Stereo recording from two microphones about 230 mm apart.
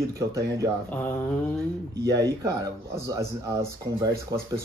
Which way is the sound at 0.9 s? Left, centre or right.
Centre.